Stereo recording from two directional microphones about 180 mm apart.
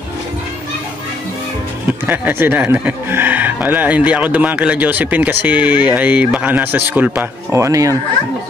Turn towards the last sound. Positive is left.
turn(degrees=-15)  # may be behind; listen again after turning